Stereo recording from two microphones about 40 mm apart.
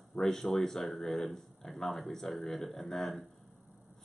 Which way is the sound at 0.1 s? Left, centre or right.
Centre.